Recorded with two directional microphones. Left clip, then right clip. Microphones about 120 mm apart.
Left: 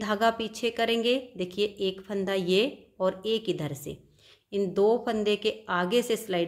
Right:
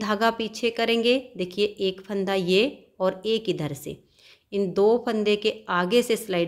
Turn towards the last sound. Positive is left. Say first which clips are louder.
# right 4 dB
turn(degrees=-25)  # may be behind; listen again after turning